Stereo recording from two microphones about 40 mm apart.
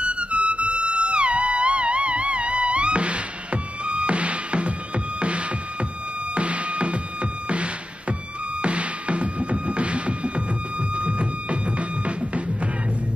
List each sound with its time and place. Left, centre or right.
0.0 s music: right